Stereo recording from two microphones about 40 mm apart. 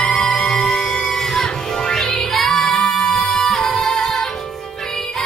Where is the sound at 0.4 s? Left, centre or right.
Centre.